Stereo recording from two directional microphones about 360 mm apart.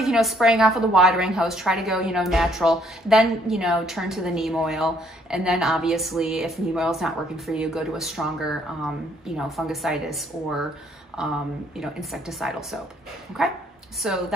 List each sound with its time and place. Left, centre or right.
0.0 s a woman's voice: centre